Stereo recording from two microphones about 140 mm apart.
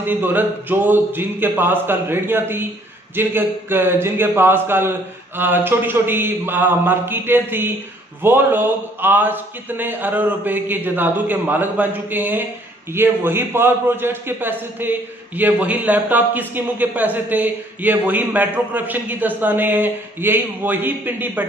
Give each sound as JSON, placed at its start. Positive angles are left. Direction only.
{"t": 0.0, "sound": "a man's voice", "side_deg": -15}